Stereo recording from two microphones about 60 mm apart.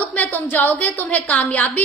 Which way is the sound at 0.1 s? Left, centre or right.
Left.